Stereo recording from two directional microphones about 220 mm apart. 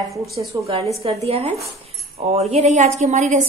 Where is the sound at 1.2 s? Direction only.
30° right (ahead or behind).